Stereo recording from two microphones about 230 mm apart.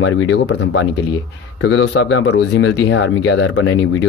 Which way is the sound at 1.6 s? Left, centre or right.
Left.